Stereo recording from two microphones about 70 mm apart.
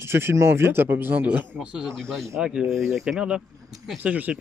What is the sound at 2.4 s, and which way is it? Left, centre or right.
Speech, centre.